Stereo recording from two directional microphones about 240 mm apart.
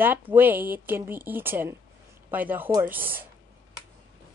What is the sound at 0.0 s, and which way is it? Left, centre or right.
A woman's voice, centre.